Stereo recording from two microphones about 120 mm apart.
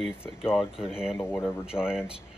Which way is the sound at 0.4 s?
5° right (ahead or behind).